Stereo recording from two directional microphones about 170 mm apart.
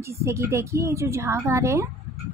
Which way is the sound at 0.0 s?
15° right (ahead or behind).